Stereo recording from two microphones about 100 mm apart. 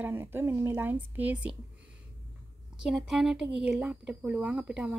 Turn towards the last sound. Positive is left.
turn(degrees=-10)  # may be behind; listen again after turning